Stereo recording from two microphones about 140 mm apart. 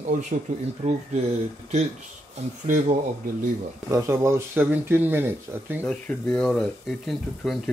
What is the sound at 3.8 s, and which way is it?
Speech, 20° right (ahead or behind).